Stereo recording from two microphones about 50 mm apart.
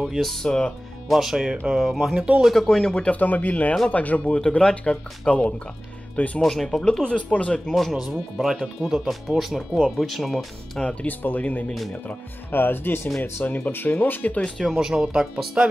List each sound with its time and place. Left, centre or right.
0.0 s speech: centre
0.5 s speech: centre
1.0 s speech: centre
2.1 s speech: right
2.5 s speech: centre
2.9 s speech: left
4.4 s speech: centre
6.4 s speech: centre
7.7 s speech: centre
10.8 s speech: left
11.1 s speech: left
12.4 s speech: left
14.8 s speech: centre